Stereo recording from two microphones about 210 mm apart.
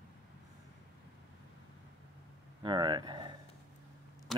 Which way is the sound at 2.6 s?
20° right (ahead or behind).